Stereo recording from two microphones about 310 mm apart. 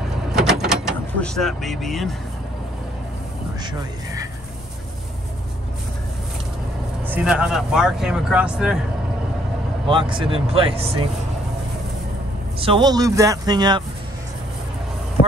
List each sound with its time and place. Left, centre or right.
0.3 s vehicle: centre
7.1 s speech: centre
9.8 s a man's voice: centre
12.5 s a man's voice: centre